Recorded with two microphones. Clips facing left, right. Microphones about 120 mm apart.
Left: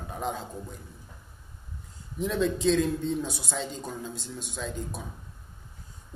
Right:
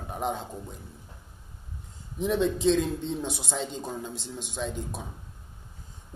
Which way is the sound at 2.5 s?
25° right (ahead or behind).